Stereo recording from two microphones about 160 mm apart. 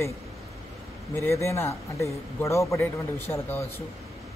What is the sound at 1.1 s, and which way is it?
A man's voice, 15° left (ahead or behind).